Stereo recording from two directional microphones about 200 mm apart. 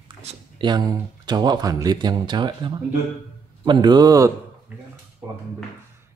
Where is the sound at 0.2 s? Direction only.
30° right (ahead or behind).